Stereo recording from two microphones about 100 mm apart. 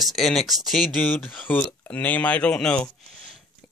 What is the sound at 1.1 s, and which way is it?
Speech, 15° left (ahead or behind).